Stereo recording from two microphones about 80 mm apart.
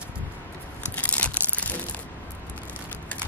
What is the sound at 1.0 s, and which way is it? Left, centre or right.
Crumpling, centre.